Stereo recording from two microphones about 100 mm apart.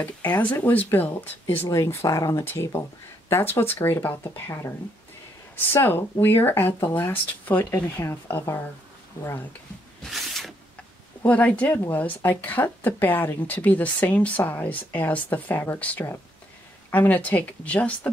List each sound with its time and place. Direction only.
0.4 s speech: 20° left (ahead or behind)
10.0 s a sound: centre (ahead or behind)
11.2 s speech: 15° left (ahead or behind)